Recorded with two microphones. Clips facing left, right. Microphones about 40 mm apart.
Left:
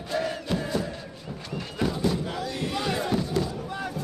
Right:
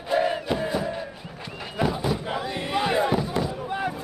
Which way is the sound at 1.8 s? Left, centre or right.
Centre.